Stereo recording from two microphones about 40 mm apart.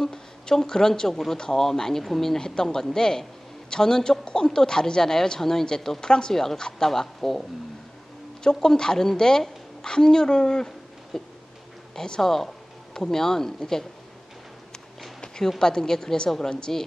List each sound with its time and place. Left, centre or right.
0.0 s speech: centre
2.3 s speech: centre
8.5 s speech: centre
15.1 s a sound: centre
15.6 s speech: centre